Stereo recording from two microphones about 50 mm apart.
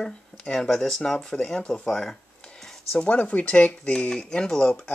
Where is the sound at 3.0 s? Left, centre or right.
Left.